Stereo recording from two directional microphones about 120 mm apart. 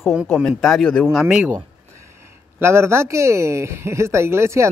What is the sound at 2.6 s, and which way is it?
Speech, 20° right (ahead or behind).